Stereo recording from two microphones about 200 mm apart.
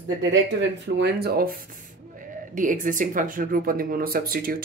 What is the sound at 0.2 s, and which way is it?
Speech, 65° right (ahead or behind).